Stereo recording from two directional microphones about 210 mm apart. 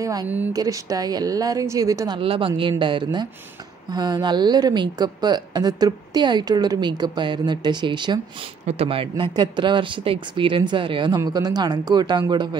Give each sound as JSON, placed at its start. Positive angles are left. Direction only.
{"t": 0.0, "sound": "a woman's voice", "side_deg": -15}